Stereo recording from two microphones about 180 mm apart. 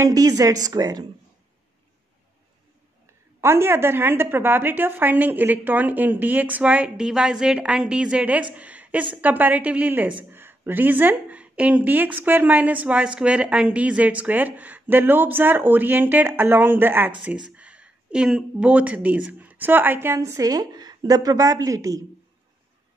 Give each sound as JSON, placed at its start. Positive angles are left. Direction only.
{"t": 0.0, "sound": "a woman's voice", "side_deg": -20}
{"t": 3.3, "sound": "a woman's voice", "side_deg": -15}
{"t": 8.5, "sound": "a sound", "side_deg": -10}
{"t": 9.1, "sound": "a woman's voice", "side_deg": -10}